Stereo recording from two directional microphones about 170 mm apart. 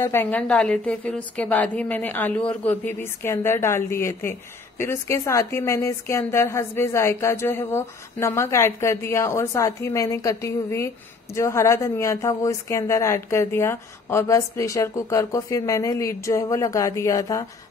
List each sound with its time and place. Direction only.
0.0 s a woman's voice: 15° left (ahead or behind)